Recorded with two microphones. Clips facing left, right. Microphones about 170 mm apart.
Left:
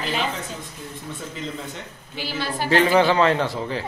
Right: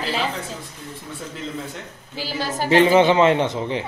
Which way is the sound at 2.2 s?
40° right (ahead or behind).